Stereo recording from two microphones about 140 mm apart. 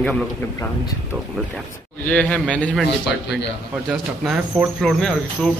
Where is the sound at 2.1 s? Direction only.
10° left (ahead or behind).